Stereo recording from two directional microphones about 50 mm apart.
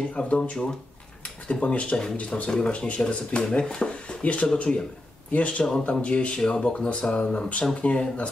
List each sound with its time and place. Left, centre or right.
0.1 s speech: left
4.2 s speech: left